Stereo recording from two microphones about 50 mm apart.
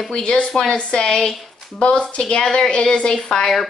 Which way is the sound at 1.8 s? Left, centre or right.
Left.